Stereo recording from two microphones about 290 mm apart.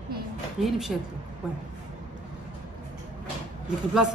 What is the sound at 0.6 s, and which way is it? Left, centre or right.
Speech, centre.